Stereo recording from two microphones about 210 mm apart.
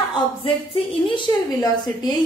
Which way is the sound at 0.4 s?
25° left (ahead or behind).